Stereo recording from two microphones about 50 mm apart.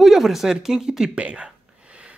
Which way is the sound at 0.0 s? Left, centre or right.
Centre.